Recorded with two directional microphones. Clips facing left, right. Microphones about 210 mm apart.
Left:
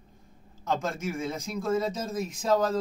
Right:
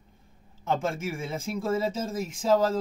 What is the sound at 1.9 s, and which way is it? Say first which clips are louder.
Speech: right 1 dB; 25° right (ahead or behind).